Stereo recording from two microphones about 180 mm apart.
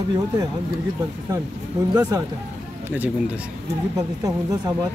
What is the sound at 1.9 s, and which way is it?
Speech, 20° right (ahead or behind).